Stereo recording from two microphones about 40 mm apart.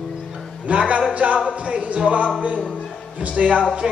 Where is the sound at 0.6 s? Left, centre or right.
Right.